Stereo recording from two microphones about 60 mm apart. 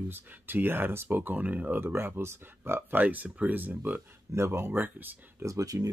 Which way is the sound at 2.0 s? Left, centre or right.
Right.